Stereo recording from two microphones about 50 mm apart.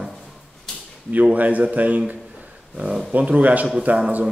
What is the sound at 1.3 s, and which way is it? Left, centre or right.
Speech, right.